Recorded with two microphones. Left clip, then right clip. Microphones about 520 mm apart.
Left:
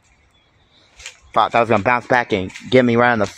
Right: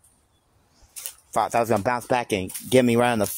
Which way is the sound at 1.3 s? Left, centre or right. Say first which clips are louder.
Left 7 dB; right.